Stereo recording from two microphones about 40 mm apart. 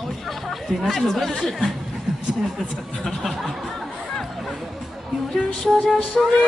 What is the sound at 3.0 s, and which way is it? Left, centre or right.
Speech, centre.